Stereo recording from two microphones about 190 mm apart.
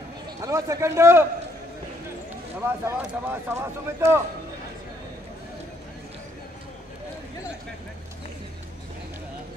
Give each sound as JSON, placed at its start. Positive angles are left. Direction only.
{"t": 0.4, "sound": "speech", "side_deg": -15}
{"t": 2.6, "sound": "speech", "side_deg": -10}